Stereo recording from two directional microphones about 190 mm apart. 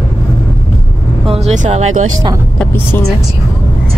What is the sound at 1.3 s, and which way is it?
Speech, 35° right (ahead or behind).